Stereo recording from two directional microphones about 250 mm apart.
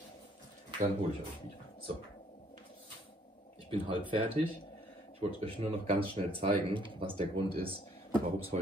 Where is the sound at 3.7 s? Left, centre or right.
Centre.